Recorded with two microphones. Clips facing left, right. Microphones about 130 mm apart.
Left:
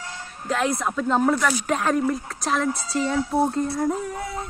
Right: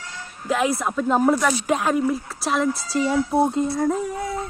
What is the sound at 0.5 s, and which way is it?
A woman's voice, 5° right (ahead or behind).